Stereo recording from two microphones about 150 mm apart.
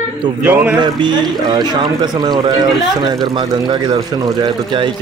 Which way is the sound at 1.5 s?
30° right (ahead or behind).